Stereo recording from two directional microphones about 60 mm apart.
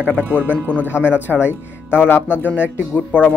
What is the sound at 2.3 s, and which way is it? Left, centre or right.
Speech, right.